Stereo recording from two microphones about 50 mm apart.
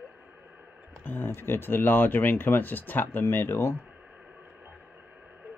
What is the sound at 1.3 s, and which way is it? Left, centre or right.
Speech, left.